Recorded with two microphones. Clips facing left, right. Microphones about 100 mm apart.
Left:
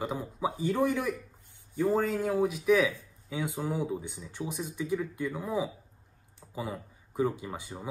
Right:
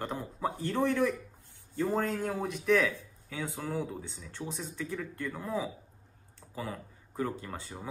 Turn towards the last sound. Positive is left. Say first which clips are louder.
# left 4 dB
turn(degrees=15)  # may be behind; listen again after turning